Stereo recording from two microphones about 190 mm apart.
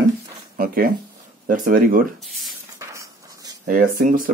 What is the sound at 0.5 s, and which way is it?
Speech, 50° right (ahead or behind).